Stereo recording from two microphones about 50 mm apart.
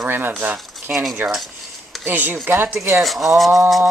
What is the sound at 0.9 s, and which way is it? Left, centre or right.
Speech, right.